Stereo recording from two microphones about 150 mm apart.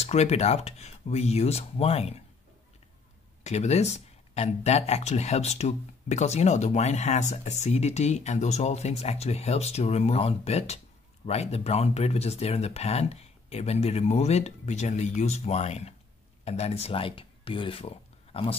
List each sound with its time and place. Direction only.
0.0 s speech: 45° left (ahead or behind)
3.4 s speech: 45° left (ahead or behind)